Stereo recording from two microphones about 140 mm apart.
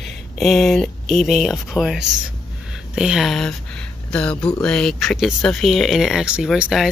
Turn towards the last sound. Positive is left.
turn(degrees=0)  # may be behind; listen again after turning